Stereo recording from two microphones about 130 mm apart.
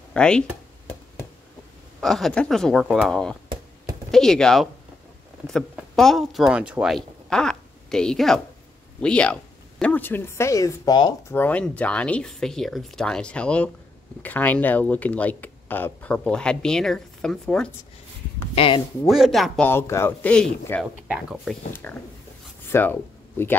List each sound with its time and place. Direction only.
0.1 s speech: 5° left (ahead or behind)
2.0 s speech: centre (ahead or behind); by 11.0 s 25° left (ahead or behind)
11.2 s speech: 15° left (ahead or behind)
18.5 s speech: 45° left (ahead or behind)
19.0 s speech: centre (ahead or behind)
19.6 s speech: 15° left (ahead or behind)
21.8 s speech: 15° left (ahead or behind)